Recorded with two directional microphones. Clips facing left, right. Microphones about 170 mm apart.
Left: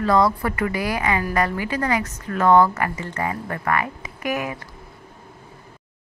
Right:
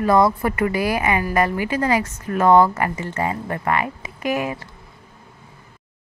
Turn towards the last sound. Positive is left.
turn(degrees=-25)  # may be behind; listen again after turning